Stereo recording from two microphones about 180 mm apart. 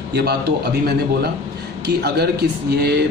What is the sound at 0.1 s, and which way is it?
Speech, 60° right (ahead or behind).